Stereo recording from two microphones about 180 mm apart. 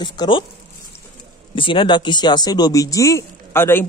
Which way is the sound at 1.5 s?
30° left (ahead or behind).